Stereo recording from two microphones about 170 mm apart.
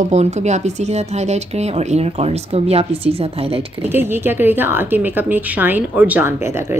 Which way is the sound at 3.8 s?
15° right (ahead or behind).